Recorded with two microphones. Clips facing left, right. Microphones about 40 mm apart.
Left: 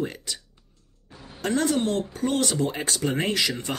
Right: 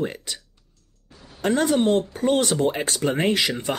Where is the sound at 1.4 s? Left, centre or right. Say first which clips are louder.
Right 4 dB; centre.